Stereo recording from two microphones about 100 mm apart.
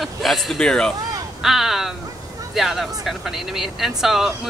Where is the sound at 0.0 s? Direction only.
Centre (ahead or behind).